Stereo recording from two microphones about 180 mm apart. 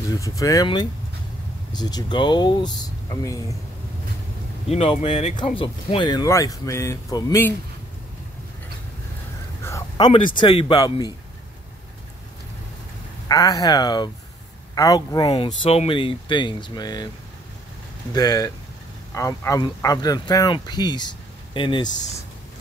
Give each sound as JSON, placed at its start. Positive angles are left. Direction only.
{"t": 0.1, "sound": "speech", "side_deg": 20}
{"t": 4.6, "sound": "speech", "side_deg": 35}
{"t": 9.6, "sound": "speech", "side_deg": 15}
{"t": 13.3, "sound": "speech", "side_deg": 20}
{"t": 18.1, "sound": "speech", "side_deg": 20}